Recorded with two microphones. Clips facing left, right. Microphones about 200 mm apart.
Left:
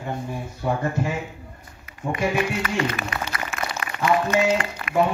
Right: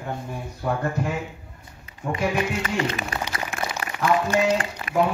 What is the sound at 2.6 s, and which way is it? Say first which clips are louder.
Speech: left 1 dB; 25° right (ahead or behind).